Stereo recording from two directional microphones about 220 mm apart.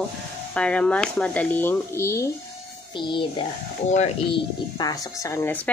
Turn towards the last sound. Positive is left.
turn(degrees=10)  # may be behind; listen again after turning